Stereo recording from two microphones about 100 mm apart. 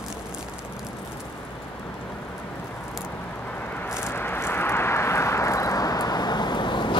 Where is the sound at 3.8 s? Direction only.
25° left (ahead or behind).